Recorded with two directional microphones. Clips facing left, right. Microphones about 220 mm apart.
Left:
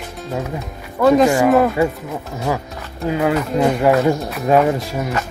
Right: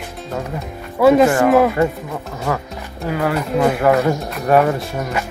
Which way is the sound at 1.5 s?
Centre (ahead or behind).